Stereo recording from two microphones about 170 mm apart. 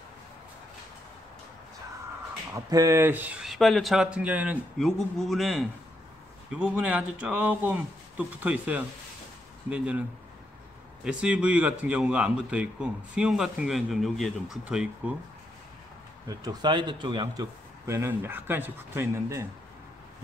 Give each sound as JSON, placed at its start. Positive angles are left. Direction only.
{"t": 2.5, "sound": "a man's voice", "side_deg": -20}
{"t": 4.7, "sound": "a man's voice", "side_deg": 0}
{"t": 11.1, "sound": "speech", "side_deg": -5}
{"t": 16.3, "sound": "a man's voice", "side_deg": -25}